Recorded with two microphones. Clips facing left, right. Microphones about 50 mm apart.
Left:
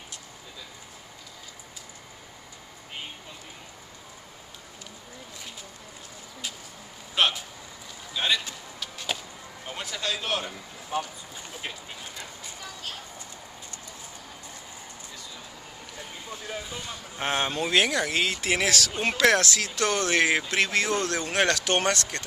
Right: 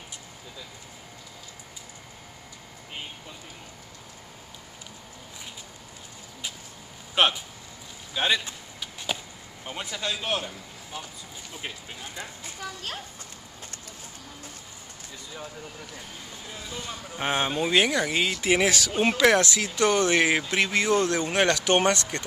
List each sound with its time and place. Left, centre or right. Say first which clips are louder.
7.2 s speech: right 2 dB; right
8.1 s chop: right 2 dB; centre
9.7 s speech: even; centre
16.7 s speech: right 1 dB; centre